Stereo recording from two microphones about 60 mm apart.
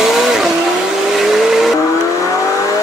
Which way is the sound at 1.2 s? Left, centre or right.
Centre.